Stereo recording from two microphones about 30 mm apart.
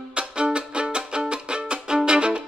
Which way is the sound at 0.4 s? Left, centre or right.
Right.